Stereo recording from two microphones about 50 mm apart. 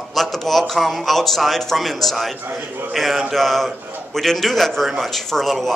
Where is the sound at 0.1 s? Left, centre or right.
Centre.